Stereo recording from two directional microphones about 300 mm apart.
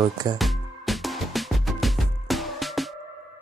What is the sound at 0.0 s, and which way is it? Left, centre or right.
Speech, centre.